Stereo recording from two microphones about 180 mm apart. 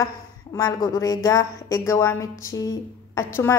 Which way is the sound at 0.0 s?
20° left (ahead or behind).